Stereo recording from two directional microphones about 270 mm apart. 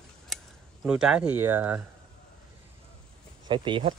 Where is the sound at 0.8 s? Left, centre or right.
Centre.